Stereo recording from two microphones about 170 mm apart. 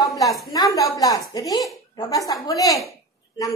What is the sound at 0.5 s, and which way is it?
A woman's voice, 20° left (ahead or behind).